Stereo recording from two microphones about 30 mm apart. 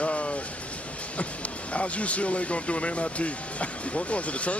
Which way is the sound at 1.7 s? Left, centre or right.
Left.